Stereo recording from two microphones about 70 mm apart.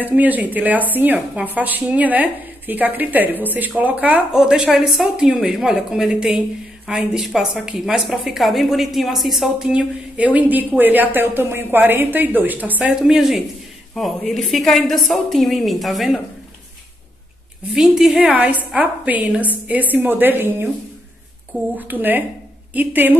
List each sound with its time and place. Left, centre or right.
0.0 s a woman's voice: right
4.4 s a woman's voice: centre
9.7 s a woman's voice: centre
13.0 s a woman's voice: centre
17.7 s a woman's voice: centre
18.2 s a woman's voice: right
21.7 s a woman's voice: right